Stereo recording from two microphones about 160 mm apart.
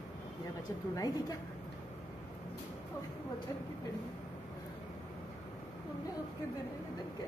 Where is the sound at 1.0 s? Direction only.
25° left (ahead or behind).